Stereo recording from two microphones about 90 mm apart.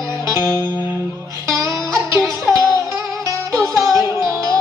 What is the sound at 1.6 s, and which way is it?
Music, 35° right (ahead or behind).